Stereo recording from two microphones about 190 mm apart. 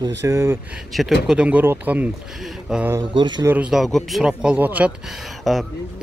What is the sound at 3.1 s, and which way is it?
Speech, 25° right (ahead or behind).